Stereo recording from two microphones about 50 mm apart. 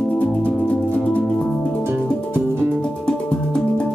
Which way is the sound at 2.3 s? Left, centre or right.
Right.